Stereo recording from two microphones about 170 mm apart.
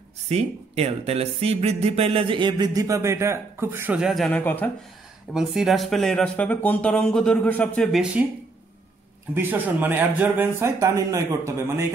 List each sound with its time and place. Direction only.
0.3 s speech: 35° right (ahead or behind); by 4.6 s 10° left (ahead or behind)
5.3 s speech: 5° right (ahead or behind)
9.3 s speech: 10° right (ahead or behind)